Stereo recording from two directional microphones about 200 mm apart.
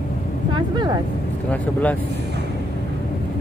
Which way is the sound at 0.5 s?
20° right (ahead or behind).